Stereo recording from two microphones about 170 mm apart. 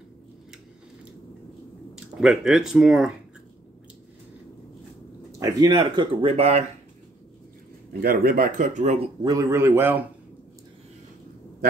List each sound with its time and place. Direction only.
2.1 s speech: centre (ahead or behind)
5.4 s speech: 25° right (ahead or behind)
8.0 s speech: 60° right (ahead or behind); by 9.1 s 40° right (ahead or behind)
9.2 s speech: 20° right (ahead or behind)